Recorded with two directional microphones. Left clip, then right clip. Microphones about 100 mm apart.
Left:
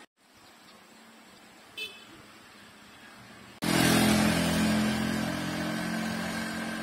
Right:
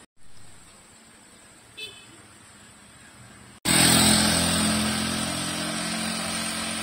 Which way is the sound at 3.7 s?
50° right (ahead or behind).